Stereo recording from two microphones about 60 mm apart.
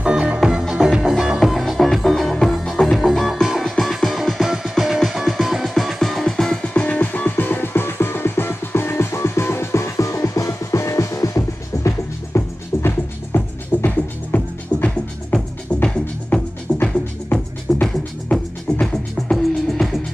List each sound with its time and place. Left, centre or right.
0.0 s music: centre
6.7 s music: left
12.4 s music: left
13.8 s music: left
19.3 s music: centre